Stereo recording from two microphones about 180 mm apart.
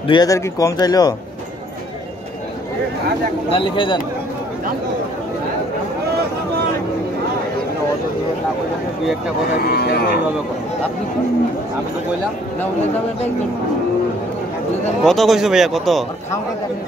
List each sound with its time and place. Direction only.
0.1 s speech: 20° left (ahead or behind)
3.4 s speech: 30° left (ahead or behind)
9.6 s speech: 60° left (ahead or behind)
15.0 s speech: centre (ahead or behind)